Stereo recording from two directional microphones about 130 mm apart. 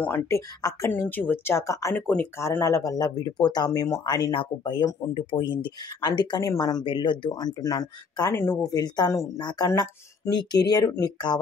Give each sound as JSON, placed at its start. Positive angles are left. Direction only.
{"t": 0.0, "sound": "speech", "side_deg": 15}
{"t": 0.6, "sound": "a woman's voice", "side_deg": 30}
{"t": 0.9, "sound": "speech", "side_deg": 15}
{"t": 2.0, "sound": "speech", "side_deg": 10}
{"t": 2.4, "sound": "speech", "side_deg": 20}